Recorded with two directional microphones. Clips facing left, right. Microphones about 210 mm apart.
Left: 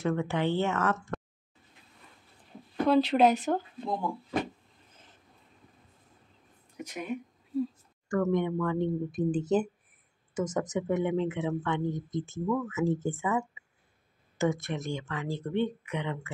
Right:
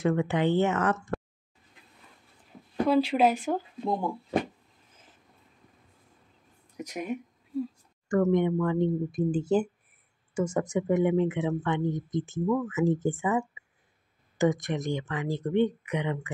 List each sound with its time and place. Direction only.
0.0 s speech: 15° right (ahead or behind)
2.9 s speech: 5° right (ahead or behind)
6.8 s speech: 40° right (ahead or behind)
8.3 s speech: 20° right (ahead or behind)
14.4 s speech: 15° right (ahead or behind)